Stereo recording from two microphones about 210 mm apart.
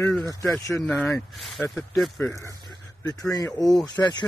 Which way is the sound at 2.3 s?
15° left (ahead or behind).